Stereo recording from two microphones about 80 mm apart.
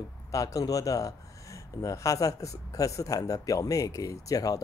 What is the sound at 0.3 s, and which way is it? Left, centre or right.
Speech, left.